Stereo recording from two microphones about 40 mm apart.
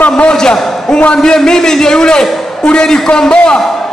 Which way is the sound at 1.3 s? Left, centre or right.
Centre.